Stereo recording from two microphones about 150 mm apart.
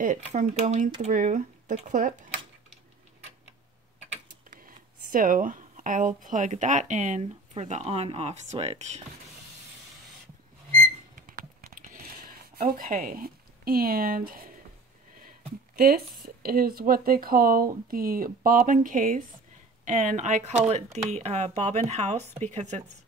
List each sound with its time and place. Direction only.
0.0 s speech: 60° right (ahead or behind)
4.5 s speech: 65° right (ahead or behind); by 9.0 s 45° right (ahead or behind)
11.1 s typing: 65° right (ahead or behind)
15.2 s a sound: 85° right
16.4 s speech: 80° right; by 22.8 s 50° right (ahead or behind)